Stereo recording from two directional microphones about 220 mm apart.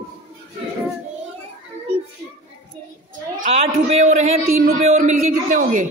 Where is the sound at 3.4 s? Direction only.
30° right (ahead or behind).